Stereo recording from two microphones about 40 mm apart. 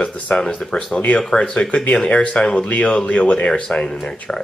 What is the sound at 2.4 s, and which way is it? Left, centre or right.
Speech, left.